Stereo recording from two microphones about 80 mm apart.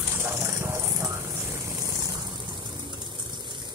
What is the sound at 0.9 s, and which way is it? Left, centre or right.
Vehicle, right.